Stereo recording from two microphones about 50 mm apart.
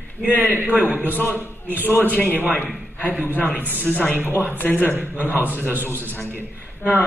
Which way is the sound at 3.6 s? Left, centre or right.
Right.